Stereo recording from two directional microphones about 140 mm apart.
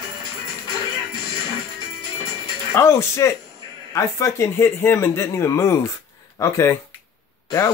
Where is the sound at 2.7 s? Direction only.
20° left (ahead or behind).